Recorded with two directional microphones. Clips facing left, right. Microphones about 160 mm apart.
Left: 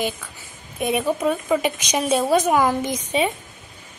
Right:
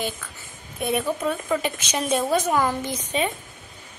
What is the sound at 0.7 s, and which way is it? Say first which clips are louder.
Speech: left 3 dB; 15° left (ahead or behind).